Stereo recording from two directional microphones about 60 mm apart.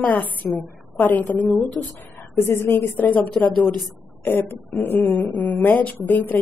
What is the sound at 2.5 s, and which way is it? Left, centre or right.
A woman's voice, left.